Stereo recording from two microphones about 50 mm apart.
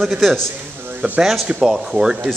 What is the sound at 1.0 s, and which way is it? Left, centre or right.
Speech, right.